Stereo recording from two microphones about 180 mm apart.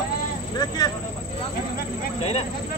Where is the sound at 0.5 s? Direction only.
20° left (ahead or behind).